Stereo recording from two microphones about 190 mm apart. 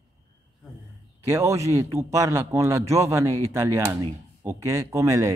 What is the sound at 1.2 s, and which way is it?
A man's voice, 15° right (ahead or behind).